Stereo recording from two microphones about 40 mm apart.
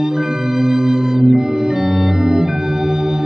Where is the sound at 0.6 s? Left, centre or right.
Centre.